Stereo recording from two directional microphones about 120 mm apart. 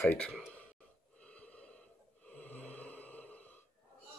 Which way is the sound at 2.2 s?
10° left (ahead or behind).